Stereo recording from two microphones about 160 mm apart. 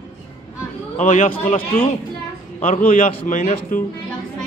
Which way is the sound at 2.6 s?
55° left (ahead or behind).